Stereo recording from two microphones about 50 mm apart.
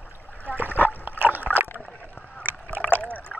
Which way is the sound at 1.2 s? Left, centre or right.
Right.